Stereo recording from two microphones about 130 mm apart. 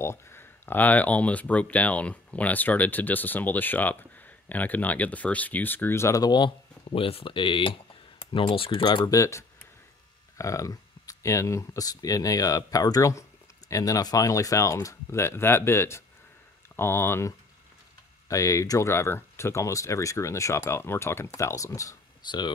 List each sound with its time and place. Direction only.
0.0 s speech: 20° left (ahead or behind); by 9.1 s 35° left (ahead or behind)
9.1 s speech: 20° left (ahead or behind)
18.3 s speech: 25° left (ahead or behind)